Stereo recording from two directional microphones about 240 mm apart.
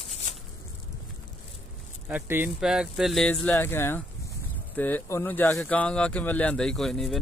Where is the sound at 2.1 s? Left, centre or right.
Centre.